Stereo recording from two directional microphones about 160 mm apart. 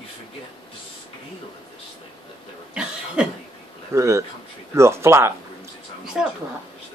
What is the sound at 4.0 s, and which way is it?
Speech, 20° right (ahead or behind).